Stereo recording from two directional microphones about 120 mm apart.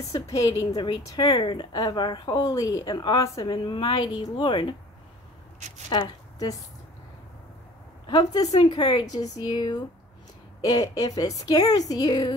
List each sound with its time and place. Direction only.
0.1 s a woman's voice: 30° left (ahead or behind)
3.5 s a woman's voice: 45° left (ahead or behind)
4.1 s a woman's voice: 35° left (ahead or behind)
5.9 s speech: 40° left (ahead or behind)
8.1 s a woman's voice: 30° left (ahead or behind)